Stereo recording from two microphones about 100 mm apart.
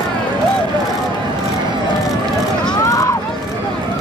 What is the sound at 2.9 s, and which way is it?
Run, 35° left (ahead or behind).